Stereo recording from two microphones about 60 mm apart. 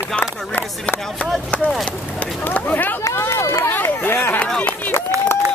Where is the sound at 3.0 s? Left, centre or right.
Left.